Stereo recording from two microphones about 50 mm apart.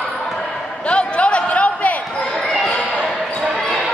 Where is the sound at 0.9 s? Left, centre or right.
Left.